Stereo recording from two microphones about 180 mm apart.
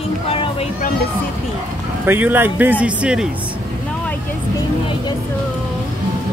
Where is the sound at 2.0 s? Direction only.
10° right (ahead or behind).